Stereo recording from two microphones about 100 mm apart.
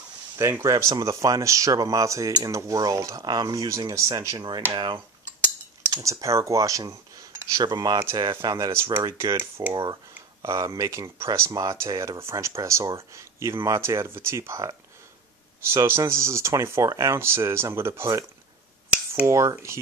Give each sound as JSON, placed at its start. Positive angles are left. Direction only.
{"t": 0.4, "sound": "speech", "side_deg": -30}
{"t": 4.7, "sound": "speech", "side_deg": -55}
{"t": 5.9, "sound": "speech", "side_deg": -35}
{"t": 10.4, "sound": "speech", "side_deg": -30}
{"t": 15.7, "sound": "speech", "side_deg": -25}
{"t": 19.2, "sound": "speech", "side_deg": -30}